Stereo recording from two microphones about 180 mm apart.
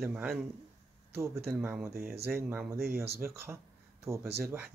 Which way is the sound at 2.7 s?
15° right (ahead or behind).